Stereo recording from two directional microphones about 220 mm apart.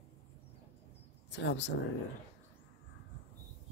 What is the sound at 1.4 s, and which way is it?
Speech, 55° left (ahead or behind).